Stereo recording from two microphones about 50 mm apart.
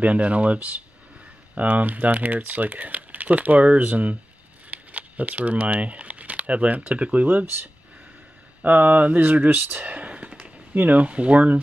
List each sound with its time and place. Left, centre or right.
0.0 s speech: right
7.2 s speech: right
10.4 s speech: right